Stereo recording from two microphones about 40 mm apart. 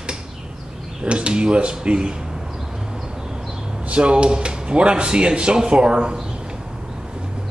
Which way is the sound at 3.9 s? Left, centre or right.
Right.